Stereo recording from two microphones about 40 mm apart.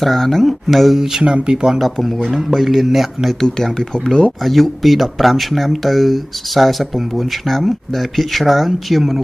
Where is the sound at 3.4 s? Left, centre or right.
Centre.